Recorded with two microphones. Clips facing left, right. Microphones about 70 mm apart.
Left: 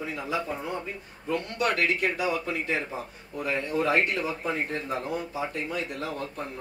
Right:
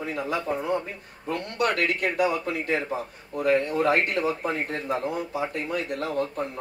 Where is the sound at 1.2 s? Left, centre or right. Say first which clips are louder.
Even; right.